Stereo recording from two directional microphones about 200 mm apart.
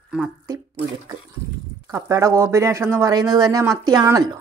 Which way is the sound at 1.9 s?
15° right (ahead or behind).